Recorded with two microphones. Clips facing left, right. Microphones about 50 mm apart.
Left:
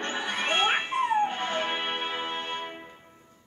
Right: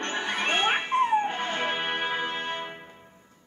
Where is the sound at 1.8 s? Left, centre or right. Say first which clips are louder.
Right 3 dB; right.